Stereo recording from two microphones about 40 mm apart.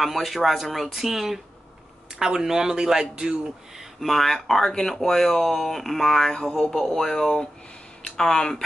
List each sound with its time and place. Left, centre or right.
0.0 s speech: centre
4.0 s speech: centre
6.3 s speech: centre